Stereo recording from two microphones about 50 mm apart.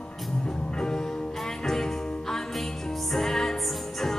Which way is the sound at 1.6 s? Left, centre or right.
Centre.